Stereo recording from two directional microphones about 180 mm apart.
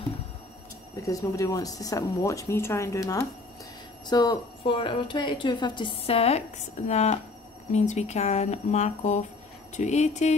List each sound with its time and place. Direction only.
1.0 s a woman's voice: 20° left (ahead or behind); by 10.3 s 40° left (ahead or behind)